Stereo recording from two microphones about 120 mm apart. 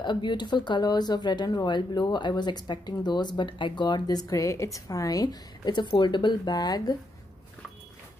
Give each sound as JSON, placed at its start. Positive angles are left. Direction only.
{"t": 0.0, "sound": "speech", "side_deg": 40}